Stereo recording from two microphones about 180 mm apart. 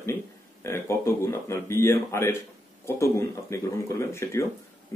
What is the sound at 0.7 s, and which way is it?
Speech, 15° left (ahead or behind).